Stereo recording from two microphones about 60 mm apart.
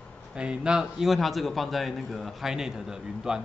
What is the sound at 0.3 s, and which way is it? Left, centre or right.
A man's voice, centre.